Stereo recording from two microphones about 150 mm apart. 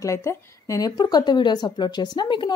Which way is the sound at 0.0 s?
20° left (ahead or behind).